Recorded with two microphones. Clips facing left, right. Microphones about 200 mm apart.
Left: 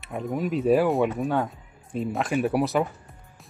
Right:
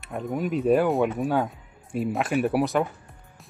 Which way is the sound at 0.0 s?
Centre (ahead or behind).